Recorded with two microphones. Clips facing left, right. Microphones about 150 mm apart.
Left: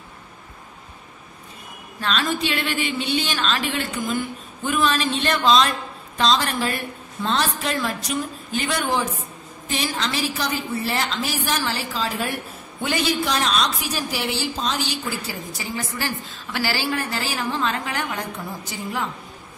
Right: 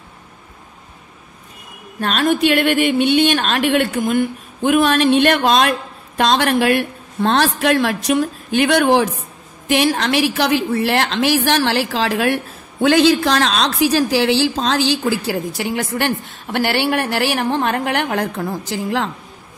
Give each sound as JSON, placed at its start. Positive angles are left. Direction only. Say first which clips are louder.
{"t": 2.0, "sound": "a woman's voice", "louder": "right 7 dB", "side_deg": -55}